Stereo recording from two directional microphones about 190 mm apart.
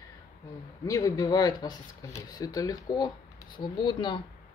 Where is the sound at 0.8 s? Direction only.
20° left (ahead or behind).